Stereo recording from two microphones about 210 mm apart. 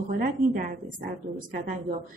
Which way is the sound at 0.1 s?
40° right (ahead or behind).